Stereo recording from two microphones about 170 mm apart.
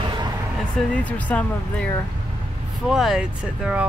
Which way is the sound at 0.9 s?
10° left (ahead or behind).